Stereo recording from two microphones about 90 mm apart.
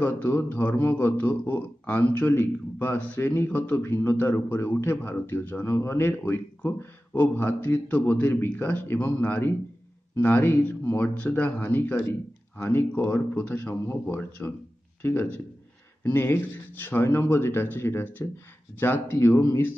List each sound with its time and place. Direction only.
0.0 s a man's voice: 25° left (ahead or behind)